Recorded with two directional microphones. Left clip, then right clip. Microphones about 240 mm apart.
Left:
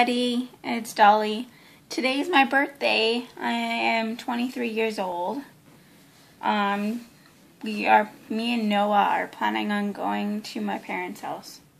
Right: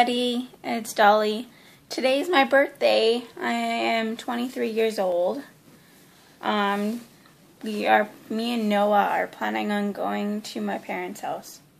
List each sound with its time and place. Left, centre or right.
0.0 s speech: centre
6.4 s speech: centre